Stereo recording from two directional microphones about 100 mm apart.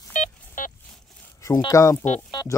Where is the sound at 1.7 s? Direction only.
30° left (ahead or behind).